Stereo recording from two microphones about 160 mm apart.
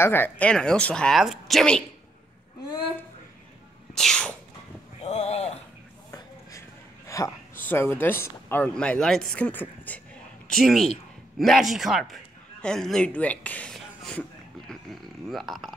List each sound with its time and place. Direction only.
0.0 s speech: 15° left (ahead or behind)
3.9 s speech: 5° left (ahead or behind)
5.0 s speech: 40° left (ahead or behind)
7.1 s a sound: 20° left (ahead or behind)
7.6 s speech: 15° left (ahead or behind)